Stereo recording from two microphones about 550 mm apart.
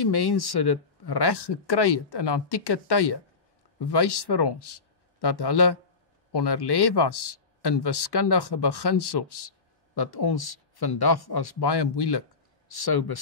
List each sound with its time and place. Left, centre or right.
0.0 s speech: left